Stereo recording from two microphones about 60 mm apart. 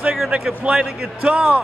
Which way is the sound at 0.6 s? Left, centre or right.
Centre.